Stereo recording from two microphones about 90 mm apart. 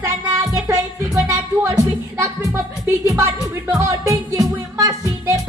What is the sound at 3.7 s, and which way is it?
Music, 40° right (ahead or behind).